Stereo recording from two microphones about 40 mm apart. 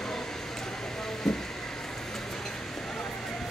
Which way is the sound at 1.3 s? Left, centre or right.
Centre.